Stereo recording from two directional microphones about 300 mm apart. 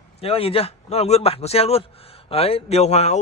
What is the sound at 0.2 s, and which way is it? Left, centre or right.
A man's voice, centre.